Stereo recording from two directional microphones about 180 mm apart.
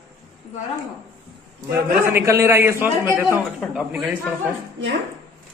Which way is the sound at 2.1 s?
15° right (ahead or behind).